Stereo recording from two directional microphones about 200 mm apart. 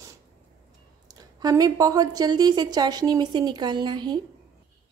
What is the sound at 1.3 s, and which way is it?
Speech, 20° right (ahead or behind).